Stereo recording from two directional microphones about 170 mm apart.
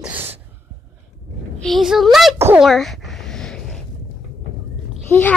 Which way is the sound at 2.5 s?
Centre (ahead or behind).